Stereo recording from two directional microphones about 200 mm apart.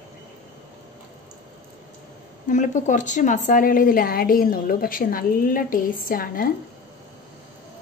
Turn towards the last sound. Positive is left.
turn(degrees=45)  # may be behind; listen again after turning